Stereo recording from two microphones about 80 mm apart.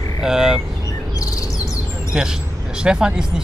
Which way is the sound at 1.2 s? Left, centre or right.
Left.